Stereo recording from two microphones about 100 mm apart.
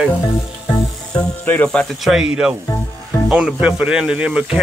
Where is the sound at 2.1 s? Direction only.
5° right (ahead or behind).